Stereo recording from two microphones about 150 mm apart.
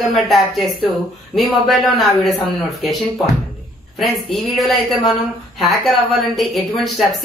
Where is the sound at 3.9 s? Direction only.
Centre (ahead or behind).